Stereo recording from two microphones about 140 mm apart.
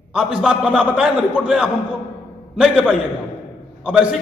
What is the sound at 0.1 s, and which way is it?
A man's voice, 5° right (ahead or behind).